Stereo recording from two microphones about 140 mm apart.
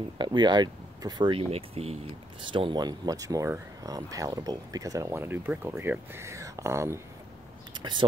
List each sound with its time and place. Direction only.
0.2 s speech: 30° right (ahead or behind)